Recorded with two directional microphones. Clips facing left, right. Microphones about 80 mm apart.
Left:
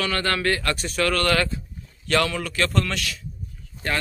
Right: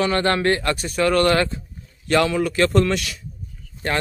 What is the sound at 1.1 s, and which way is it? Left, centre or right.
Speech, right.